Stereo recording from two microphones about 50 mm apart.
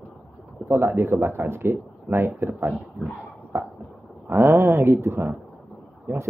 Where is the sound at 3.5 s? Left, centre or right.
Right.